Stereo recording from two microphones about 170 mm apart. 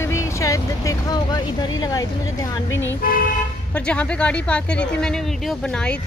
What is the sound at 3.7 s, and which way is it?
Speech, 5° left (ahead or behind).